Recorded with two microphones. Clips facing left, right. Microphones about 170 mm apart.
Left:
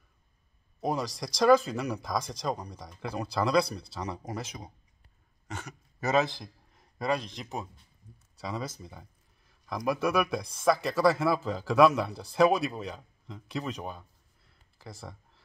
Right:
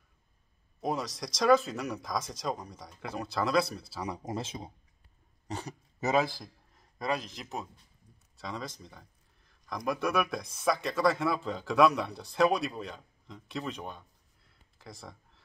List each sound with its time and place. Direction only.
0.7 s speech: centre (ahead or behind)
4.2 s speech: 25° right (ahead or behind)
5.9 s a man's voice: 15° right (ahead or behind)
6.4 s a man's voice: centre (ahead or behind)
14.8 s a sound: centre (ahead or behind)